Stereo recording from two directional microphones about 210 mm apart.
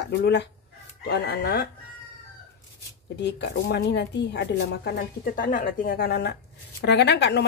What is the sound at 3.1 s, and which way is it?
Speech, 55° left (ahead or behind).